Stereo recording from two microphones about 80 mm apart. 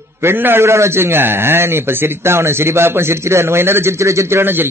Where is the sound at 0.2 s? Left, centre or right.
Right.